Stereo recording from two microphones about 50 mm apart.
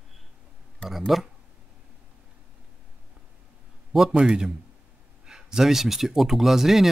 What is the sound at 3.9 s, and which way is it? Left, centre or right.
A man's voice, centre.